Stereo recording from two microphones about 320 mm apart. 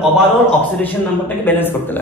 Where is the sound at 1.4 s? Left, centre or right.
Centre.